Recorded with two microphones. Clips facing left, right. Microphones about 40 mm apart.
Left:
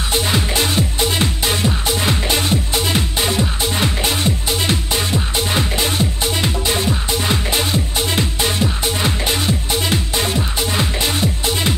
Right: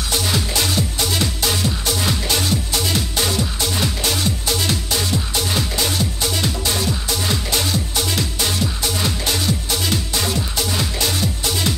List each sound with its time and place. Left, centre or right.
0.1 s music: left